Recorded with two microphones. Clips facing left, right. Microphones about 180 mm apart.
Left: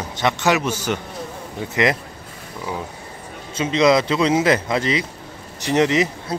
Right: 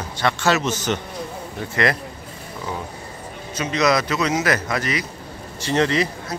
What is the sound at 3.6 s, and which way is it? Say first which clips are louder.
A man's voice: left 4 dB; 25° left (ahead or behind).